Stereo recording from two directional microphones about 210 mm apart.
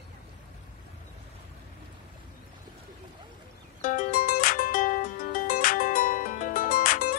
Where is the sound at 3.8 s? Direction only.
40° left (ahead or behind).